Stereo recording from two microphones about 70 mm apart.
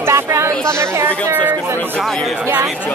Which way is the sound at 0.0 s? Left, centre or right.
Right.